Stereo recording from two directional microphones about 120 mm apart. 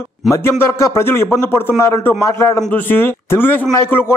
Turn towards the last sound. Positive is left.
turn(degrees=20)  # may be behind; listen again after turning